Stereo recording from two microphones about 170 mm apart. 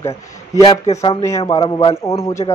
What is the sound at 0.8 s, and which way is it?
Speech, 35° left (ahead or behind).